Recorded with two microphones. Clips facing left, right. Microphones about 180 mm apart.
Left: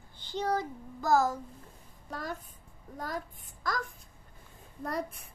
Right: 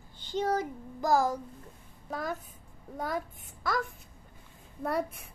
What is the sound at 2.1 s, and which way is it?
Speech, 5° right (ahead or behind).